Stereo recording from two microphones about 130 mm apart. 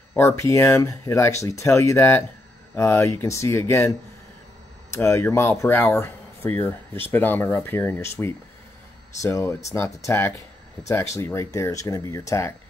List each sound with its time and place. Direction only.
0.1 s speech: 20° left (ahead or behind)
4.9 s speech: 20° left (ahead or behind)